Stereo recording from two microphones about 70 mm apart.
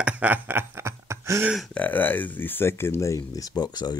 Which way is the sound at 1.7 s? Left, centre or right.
Left.